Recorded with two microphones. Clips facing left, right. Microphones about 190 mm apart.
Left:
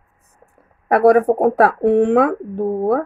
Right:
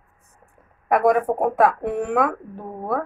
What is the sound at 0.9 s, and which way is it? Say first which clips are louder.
Speech: left 6 dB; 35° left (ahead or behind).